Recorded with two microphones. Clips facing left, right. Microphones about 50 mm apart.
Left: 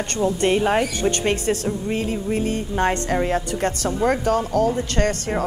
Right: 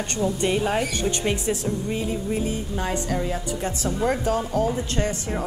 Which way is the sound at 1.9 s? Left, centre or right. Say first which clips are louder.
Left 5 dB; left.